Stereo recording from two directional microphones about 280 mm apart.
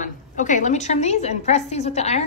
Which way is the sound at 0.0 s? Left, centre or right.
Left.